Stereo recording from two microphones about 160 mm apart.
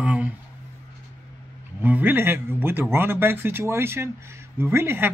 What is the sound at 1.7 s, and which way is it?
Speech, 10° right (ahead or behind).